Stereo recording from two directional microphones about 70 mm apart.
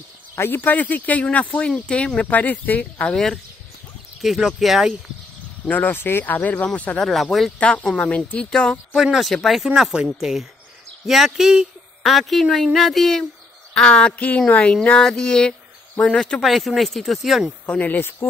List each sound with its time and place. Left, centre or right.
0.4 s speech: left
4.2 s speech: centre
5.7 s speech: left
7.0 s speech: centre
7.5 s speech: centre
8.9 s speech: centre
9.7 s speech: centre
11.1 s speech: centre
13.7 s speech: centre
17.6 s speech: left